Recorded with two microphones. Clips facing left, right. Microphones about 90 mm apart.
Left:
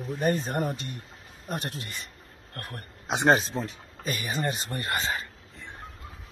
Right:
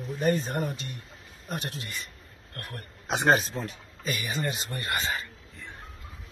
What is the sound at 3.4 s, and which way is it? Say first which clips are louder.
Speech: left 2 dB; 35° left (ahead or behind).